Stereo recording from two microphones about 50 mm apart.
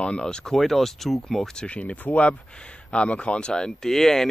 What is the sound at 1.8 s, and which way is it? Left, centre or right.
Speech, left.